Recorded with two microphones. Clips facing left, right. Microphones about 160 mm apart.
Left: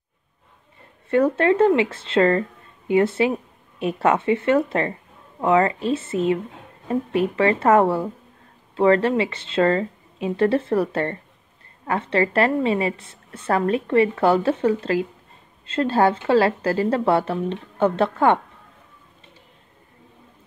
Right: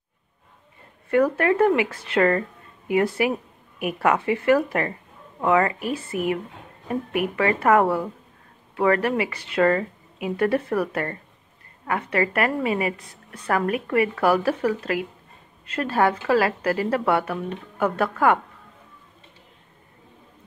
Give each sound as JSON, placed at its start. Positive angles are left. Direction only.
{"t": 1.1, "sound": "a woman's voice", "side_deg": 25}